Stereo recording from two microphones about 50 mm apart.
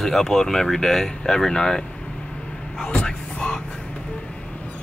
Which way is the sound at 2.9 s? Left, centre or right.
Left.